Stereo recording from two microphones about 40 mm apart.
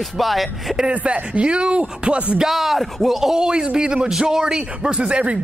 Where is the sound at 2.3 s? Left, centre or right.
Centre.